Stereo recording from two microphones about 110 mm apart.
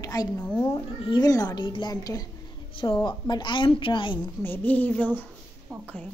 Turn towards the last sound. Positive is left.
turn(degrees=15)  # may be behind; listen again after turning